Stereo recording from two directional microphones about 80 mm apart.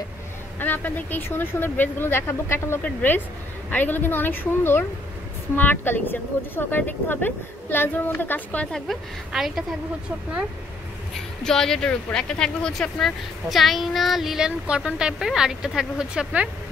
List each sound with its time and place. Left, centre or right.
0.6 s speech: left
8.7 s speech: centre
11.4 s speech: centre